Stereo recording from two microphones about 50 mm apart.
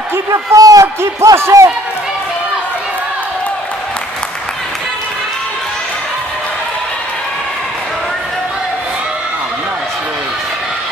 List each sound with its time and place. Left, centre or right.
0.3 s speech: right